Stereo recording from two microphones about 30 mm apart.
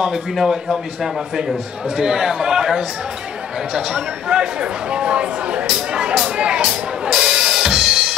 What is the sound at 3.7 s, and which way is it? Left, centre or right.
Speech, right.